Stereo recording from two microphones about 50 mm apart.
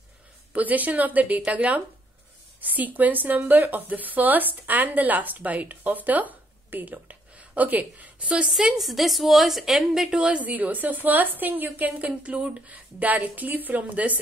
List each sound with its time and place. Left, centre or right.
0.5 s speech: right
8.5 s a woman's voice: centre; by 14.2 s right